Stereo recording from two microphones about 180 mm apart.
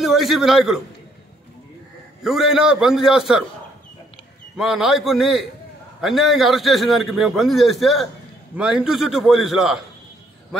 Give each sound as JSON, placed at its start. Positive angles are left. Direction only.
{"t": 0.0, "sound": "a man's voice", "side_deg": 0}
{"t": 2.2, "sound": "a man's voice", "side_deg": 0}
{"t": 4.6, "sound": "a man's voice", "side_deg": 0}